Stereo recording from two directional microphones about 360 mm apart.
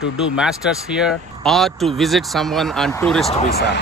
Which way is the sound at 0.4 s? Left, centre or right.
Centre.